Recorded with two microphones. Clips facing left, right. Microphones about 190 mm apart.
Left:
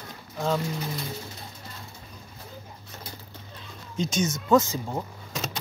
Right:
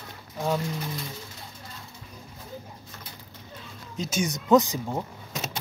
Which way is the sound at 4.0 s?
5° right (ahead or behind).